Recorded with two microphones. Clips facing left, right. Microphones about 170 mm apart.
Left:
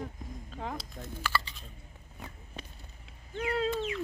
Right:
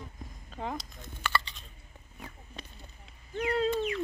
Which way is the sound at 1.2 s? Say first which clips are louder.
Right 1 dB; 5° left (ahead or behind).